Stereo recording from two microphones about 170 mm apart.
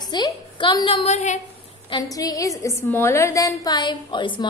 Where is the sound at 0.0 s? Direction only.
25° left (ahead or behind); by 1.4 s 45° left (ahead or behind).